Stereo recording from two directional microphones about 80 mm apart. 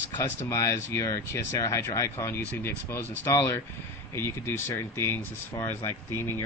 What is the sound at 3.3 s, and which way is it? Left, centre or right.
Speech, left.